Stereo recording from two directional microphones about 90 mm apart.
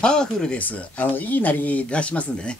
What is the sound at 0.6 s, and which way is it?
Speech, 20° left (ahead or behind).